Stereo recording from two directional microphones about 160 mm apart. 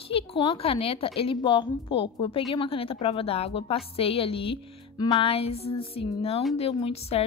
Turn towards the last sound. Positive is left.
turn(degrees=40)  # may be behind; listen again after turning